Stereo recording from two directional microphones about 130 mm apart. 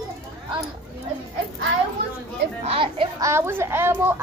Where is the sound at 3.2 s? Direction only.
20° right (ahead or behind).